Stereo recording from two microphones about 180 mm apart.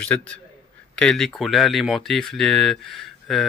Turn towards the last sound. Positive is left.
turn(degrees=0)  # may be behind; listen again after turning